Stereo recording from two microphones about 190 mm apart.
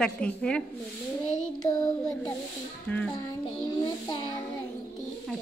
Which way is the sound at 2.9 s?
10° left (ahead or behind).